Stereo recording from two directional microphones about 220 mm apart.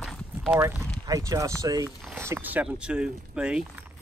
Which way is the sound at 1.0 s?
15° right (ahead or behind).